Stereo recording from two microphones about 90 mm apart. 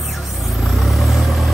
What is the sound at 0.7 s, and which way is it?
Vehicle, centre (ahead or behind).